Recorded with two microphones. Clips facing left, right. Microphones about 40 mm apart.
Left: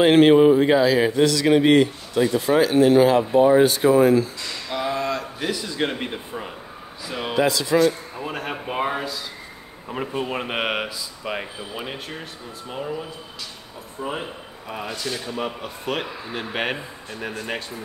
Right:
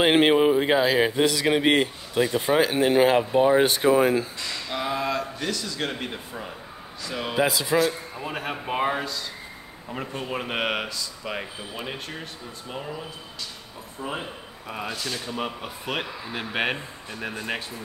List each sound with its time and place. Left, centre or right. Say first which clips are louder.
0.0 s speech: left 5 dB; centre
4.6 s speech: left 3 dB; centre
5.4 s speech: left 4 dB; centre
7.3 s speech: left 3 dB; centre
9.8 s speech: left 5 dB; centre
14.0 s a man's voice: left 3 dB; centre
14.7 s speech: left 2 dB; centre